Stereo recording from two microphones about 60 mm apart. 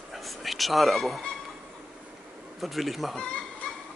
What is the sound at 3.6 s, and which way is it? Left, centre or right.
Fowl, centre.